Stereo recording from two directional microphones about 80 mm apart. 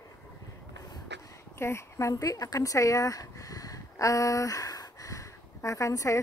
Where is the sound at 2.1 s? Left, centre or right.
Left.